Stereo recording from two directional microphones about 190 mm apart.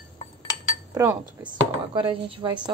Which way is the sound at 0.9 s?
20° right (ahead or behind).